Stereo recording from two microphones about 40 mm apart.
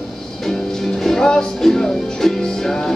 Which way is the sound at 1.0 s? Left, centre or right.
Centre.